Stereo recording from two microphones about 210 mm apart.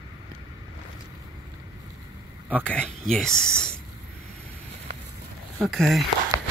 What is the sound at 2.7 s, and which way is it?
Speech, 5° left (ahead or behind).